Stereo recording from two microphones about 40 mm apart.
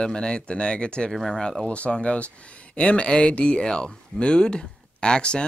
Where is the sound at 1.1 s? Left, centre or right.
Centre.